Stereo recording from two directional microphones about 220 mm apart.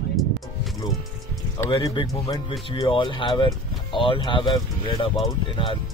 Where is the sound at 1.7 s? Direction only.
20° left (ahead or behind).